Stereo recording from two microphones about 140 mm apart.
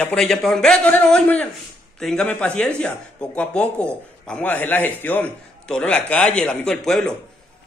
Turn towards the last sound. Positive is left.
turn(degrees=5)  # may be behind; listen again after turning